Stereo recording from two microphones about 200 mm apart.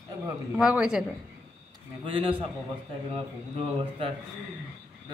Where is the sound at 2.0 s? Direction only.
25° right (ahead or behind).